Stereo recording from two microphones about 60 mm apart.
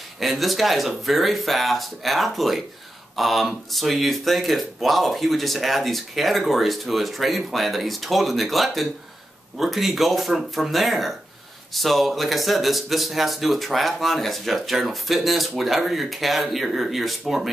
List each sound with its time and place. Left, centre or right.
0.2 s speech: centre